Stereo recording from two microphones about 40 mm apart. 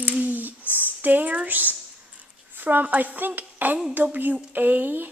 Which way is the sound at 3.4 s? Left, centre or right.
Right.